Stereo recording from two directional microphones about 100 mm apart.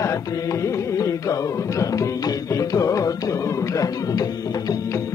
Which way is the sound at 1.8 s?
35° left (ahead or behind).